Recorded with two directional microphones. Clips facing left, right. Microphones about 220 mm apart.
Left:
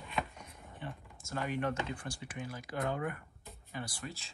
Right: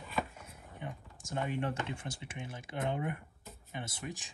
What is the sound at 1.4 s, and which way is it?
Speech, 30° right (ahead or behind).